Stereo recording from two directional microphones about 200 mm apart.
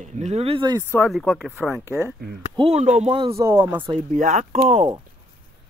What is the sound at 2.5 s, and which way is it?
Speech, 30° right (ahead or behind).